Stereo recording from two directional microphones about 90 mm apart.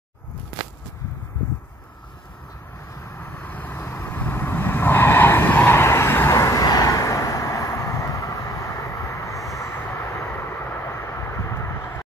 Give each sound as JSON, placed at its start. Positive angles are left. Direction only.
{"t": 3.0, "sound": "vehicle", "side_deg": 20}